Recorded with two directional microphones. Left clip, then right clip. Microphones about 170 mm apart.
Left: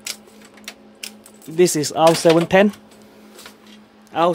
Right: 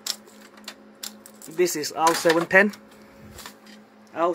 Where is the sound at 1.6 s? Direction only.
20° left (ahead or behind).